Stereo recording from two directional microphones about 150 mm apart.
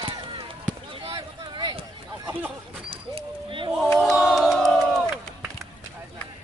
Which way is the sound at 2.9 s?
35° right (ahead or behind).